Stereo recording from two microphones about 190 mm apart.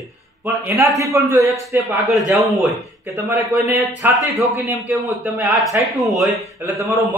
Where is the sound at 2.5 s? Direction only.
Centre (ahead or behind).